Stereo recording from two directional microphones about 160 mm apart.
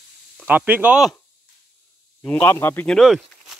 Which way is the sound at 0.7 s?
10° right (ahead or behind).